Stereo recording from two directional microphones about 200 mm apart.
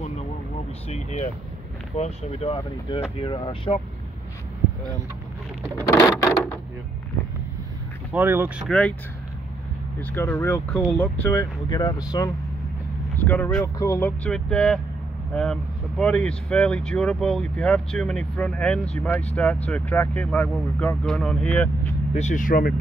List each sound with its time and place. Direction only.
0.8 s speech: 35° left (ahead or behind)
5.9 s speech: 15° left (ahead or behind)
8.1 s speech: 10° right (ahead or behind)
8.6 s speech: 5° left (ahead or behind)
9.9 s speech: 10° left (ahead or behind)
11.7 s speech: 20° left (ahead or behind)
13.2 s speech: 10° left (ahead or behind)
22.1 s speech: 40° left (ahead or behind)